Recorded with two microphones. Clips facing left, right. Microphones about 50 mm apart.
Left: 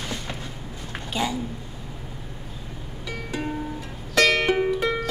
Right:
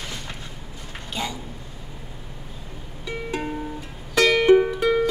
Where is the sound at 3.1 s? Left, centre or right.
Centre.